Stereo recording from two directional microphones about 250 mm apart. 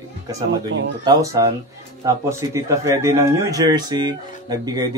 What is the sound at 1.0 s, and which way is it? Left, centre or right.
Speech, centre.